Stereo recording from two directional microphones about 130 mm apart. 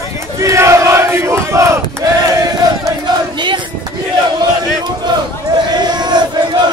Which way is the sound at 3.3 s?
35° right (ahead or behind).